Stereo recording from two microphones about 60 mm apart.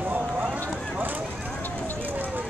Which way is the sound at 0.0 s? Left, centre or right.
Right.